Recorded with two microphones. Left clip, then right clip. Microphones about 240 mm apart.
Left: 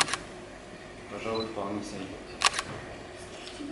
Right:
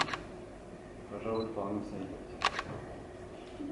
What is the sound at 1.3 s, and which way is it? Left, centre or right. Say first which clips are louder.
Speech: left 2 dB; right.